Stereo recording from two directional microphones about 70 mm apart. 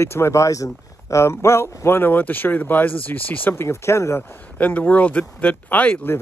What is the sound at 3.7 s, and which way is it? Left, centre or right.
Speech, left.